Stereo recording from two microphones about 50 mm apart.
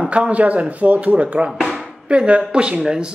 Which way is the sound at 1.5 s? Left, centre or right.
Centre.